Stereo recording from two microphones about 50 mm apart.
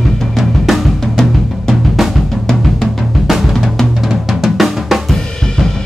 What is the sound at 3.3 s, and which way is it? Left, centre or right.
Drum, centre.